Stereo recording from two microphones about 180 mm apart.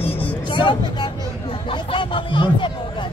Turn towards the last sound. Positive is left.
turn(degrees=25)  # may be behind; listen again after turning